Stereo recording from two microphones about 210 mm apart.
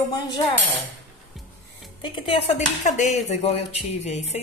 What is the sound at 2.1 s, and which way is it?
Speech, 35° left (ahead or behind).